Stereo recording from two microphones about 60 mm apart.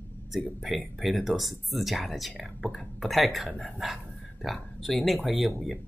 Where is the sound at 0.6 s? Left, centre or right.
Centre.